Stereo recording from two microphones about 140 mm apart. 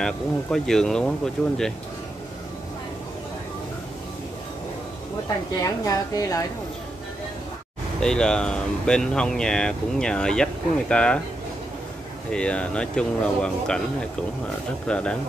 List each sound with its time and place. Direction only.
0.0 s speech: 5° left (ahead or behind)
5.6 s a woman's voice: 25° left (ahead or behind)
8.0 s speech: 5° left (ahead or behind)
12.3 s speech: 5° left (ahead or behind)
14.9 s speech: 5° left (ahead or behind)